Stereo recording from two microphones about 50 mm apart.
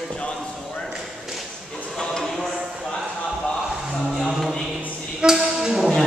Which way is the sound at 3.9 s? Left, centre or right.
Centre.